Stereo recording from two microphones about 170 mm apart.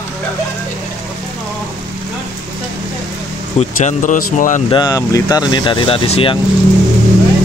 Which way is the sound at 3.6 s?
45° left (ahead or behind).